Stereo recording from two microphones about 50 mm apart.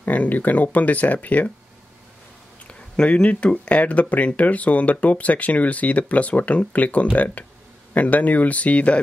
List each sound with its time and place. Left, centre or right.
0.0 s speech: left
3.0 s speech: left